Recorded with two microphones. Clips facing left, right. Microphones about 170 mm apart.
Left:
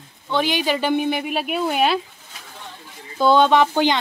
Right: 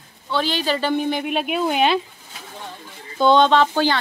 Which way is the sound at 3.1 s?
5° left (ahead or behind).